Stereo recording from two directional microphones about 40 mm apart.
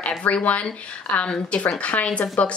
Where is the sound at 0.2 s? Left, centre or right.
Left.